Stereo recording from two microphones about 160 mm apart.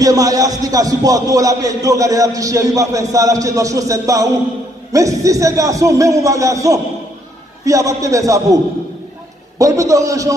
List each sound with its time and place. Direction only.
0.0 s speech: 20° right (ahead or behind)
9.6 s speech: 20° right (ahead or behind)